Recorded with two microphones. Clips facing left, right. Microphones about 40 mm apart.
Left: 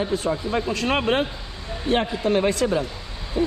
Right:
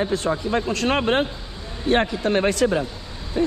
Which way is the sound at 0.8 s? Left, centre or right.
Right.